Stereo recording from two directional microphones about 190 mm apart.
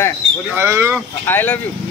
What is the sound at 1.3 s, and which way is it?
Speech, 10° left (ahead or behind).